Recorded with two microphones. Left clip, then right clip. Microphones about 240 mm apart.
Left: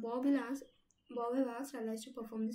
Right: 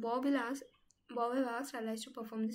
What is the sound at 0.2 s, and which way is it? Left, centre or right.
Speech, centre.